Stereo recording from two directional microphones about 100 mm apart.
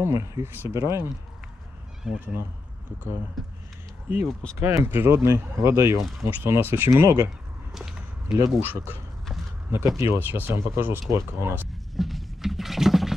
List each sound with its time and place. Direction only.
0.0 s speech: 30° right (ahead or behind)
2.1 s speech: 15° right (ahead or behind)
3.4 s speech: centre (ahead or behind)
4.6 s speech: 25° right (ahead or behind)
7.7 s a sound: 5° right (ahead or behind)
8.5 s speech: 25° right (ahead or behind)
9.9 s speech: 25° right (ahead or behind)
12.0 s a sound: centre (ahead or behind)